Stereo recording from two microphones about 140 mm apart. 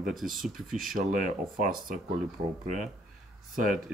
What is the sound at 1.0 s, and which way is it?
Speech, 80° right.